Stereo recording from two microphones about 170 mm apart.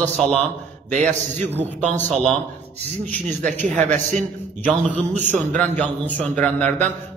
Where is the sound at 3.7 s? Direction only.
45° right (ahead or behind).